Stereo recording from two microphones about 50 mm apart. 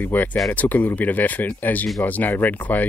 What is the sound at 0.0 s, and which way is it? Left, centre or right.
Speech, left.